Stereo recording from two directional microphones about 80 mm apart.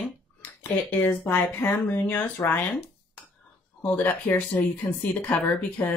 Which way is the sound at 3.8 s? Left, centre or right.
Left.